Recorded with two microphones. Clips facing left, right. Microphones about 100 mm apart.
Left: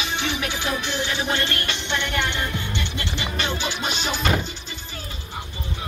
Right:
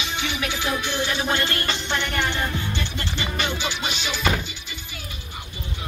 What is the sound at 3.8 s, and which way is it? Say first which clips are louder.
Music: even; 40° left (ahead or behind).